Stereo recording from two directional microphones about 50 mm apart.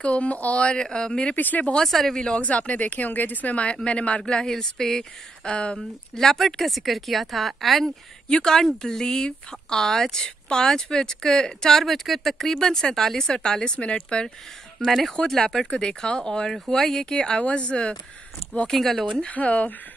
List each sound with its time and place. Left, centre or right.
0.0 s speech: left
1.3 s speech: left
1.8 s speech: centre
2.3 s speech: left
6.1 s speech: centre
8.3 s speech: centre
11.8 s speech: centre; by 13.9 s left
14.9 s speech: centre
15.1 s speech: centre
18.7 s speech: centre
19.3 s speech: left